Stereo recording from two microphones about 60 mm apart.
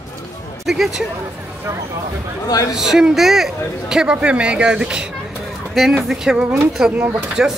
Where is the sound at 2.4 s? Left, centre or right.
Left.